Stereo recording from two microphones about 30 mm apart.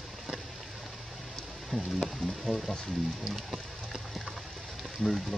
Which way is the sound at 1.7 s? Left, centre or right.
Centre.